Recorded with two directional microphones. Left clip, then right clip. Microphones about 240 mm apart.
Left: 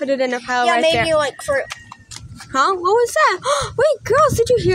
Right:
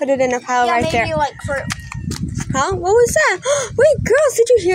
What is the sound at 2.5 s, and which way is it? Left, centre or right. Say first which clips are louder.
Speech: right 1 dB; centre.